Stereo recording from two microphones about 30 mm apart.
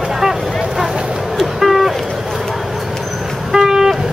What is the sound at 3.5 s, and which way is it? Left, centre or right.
Train, centre.